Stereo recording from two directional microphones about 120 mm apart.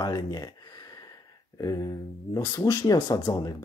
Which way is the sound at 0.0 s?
35° left (ahead or behind).